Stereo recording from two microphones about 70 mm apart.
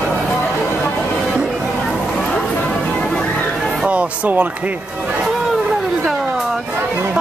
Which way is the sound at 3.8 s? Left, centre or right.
Centre.